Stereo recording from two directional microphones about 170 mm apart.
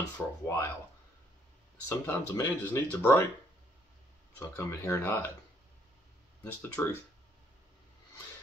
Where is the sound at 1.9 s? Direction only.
15° left (ahead or behind).